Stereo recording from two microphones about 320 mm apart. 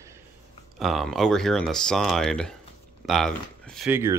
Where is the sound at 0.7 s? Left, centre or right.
Centre.